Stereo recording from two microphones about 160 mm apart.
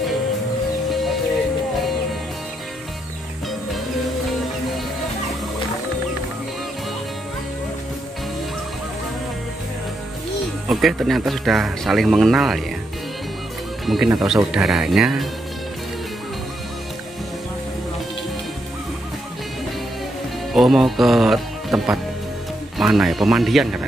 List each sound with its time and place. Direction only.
10.7 s speech: centre (ahead or behind)
13.8 s speech: centre (ahead or behind)
20.5 s speech: centre (ahead or behind)